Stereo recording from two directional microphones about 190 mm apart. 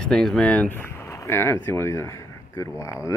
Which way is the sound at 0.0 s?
5° left (ahead or behind).